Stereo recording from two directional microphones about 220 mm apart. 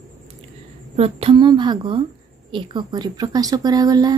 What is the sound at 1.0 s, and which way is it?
A woman's voice, 25° right (ahead or behind).